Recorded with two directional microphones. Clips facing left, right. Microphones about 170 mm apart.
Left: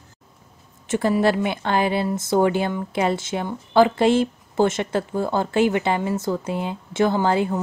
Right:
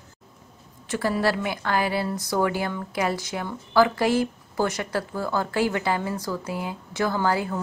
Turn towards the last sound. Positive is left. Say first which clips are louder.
# left 4 dB
turn(degrees=20)  # may be behind; listen again after turning